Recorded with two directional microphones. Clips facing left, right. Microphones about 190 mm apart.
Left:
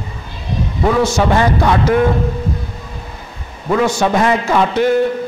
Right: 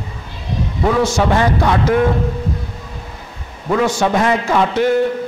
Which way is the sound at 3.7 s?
20° left (ahead or behind).